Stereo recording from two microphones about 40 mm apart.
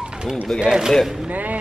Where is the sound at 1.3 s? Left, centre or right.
Right.